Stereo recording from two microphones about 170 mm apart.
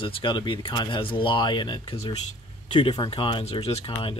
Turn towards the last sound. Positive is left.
turn(degrees=35)  # may be behind; listen again after turning